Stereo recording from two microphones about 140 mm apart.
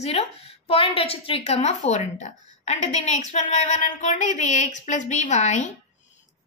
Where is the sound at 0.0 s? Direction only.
50° left (ahead or behind).